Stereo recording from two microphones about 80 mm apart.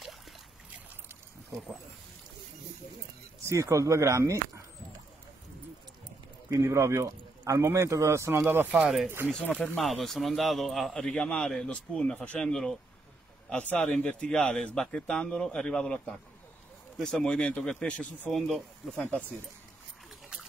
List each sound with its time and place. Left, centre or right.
3.4 s speech: right
6.6 s a man's voice: right
9.3 s a man's voice: centre
9.8 s a man's voice: centre
13.7 s a man's voice: centre